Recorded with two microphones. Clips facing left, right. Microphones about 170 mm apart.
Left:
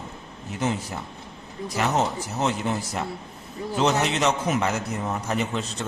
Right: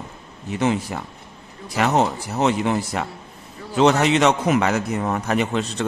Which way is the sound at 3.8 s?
70° right (ahead or behind).